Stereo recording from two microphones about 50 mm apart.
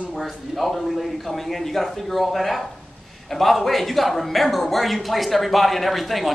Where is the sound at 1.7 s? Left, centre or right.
Centre.